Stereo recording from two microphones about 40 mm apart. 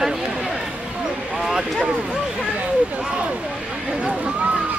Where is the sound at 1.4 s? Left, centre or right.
Centre.